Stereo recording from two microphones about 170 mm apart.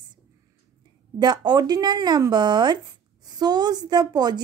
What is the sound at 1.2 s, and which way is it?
A woman's voice, 25° right (ahead or behind).